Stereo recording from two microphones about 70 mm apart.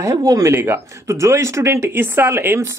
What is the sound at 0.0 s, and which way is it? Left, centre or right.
Speech, right.